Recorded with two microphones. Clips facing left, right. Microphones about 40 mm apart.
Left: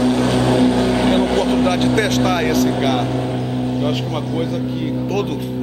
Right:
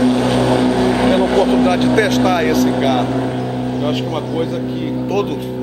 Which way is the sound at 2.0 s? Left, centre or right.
Centre.